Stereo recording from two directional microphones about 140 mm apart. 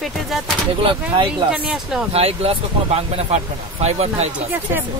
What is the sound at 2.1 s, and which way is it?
Speech, 45° right (ahead or behind).